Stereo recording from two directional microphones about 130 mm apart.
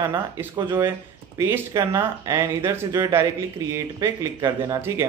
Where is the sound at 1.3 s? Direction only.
20° right (ahead or behind).